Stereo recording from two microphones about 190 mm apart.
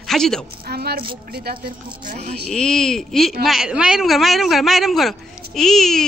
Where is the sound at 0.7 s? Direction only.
55° right (ahead or behind).